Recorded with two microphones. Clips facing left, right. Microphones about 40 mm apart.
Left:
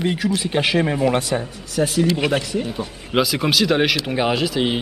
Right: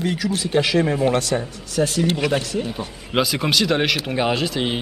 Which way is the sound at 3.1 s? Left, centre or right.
Centre.